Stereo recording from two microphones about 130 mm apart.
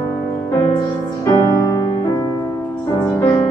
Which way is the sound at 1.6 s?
30° left (ahead or behind).